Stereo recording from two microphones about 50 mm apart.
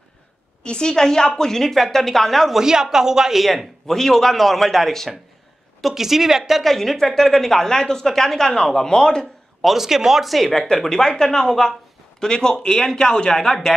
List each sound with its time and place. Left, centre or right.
0.7 s speech: centre
2.5 s speech: centre
5.8 s speech: centre
9.2 s speech: centre